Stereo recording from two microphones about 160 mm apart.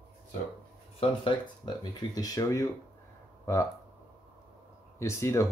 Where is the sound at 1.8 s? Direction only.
25° left (ahead or behind).